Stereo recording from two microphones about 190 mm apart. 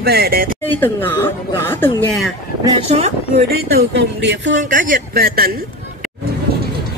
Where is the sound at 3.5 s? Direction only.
60° right (ahead or behind).